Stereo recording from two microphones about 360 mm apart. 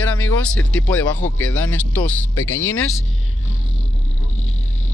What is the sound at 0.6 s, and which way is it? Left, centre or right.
Speech, centre.